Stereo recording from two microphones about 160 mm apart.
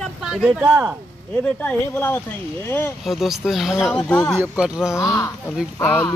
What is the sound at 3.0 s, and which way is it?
Speech, centre (ahead or behind).